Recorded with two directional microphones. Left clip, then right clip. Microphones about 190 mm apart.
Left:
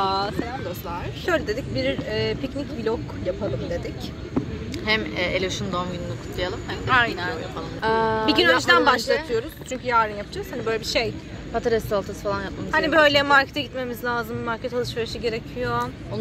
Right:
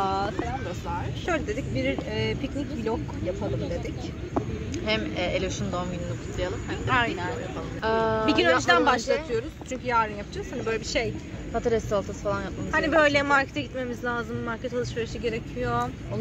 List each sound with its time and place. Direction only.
0.0 s a sound: 5° right (ahead or behind)
0.8 s speech: centre (ahead or behind)
4.8 s speech: 15° left (ahead or behind)
6.9 s speech: 5° right (ahead or behind)
7.5 s speech: 15° left (ahead or behind)
8.3 s speech: 5° right (ahead or behind)
11.5 s speech: 15° left (ahead or behind)
12.7 s speech: 5° right (ahead or behind)